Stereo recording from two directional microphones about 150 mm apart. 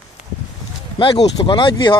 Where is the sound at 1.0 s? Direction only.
40° left (ahead or behind).